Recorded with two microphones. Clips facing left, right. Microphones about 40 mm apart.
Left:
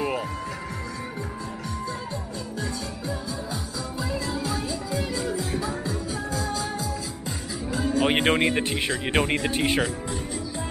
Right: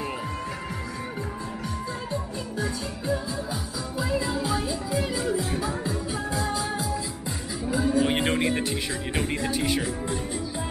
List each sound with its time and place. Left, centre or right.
4.0 s music: centre
7.6 s music: centre
8.0 s speech: left